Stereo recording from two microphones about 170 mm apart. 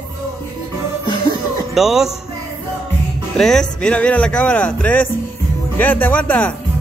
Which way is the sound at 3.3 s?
5° left (ahead or behind).